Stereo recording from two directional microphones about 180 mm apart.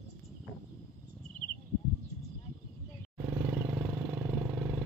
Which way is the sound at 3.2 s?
15° right (ahead or behind).